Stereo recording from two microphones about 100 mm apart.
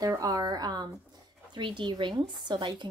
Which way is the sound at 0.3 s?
40° right (ahead or behind).